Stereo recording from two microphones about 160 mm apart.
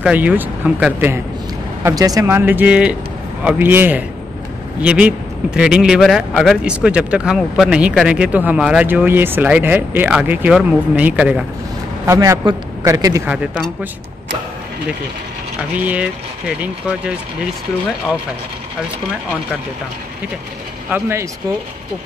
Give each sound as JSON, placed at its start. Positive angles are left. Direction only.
{"t": 0.0, "sound": "a man's voice", "side_deg": -10}
{"t": 1.8, "sound": "a man's voice", "side_deg": -20}
{"t": 12.1, "sound": "a man's voice", "side_deg": -20}
{"t": 15.8, "sound": "a man's voice", "side_deg": -10}
{"t": 20.9, "sound": "a man's voice", "side_deg": -15}